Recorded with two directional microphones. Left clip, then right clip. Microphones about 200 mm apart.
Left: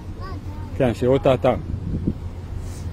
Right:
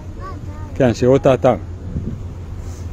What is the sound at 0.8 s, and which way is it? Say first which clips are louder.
Speech: right 5 dB; 20° right (ahead or behind).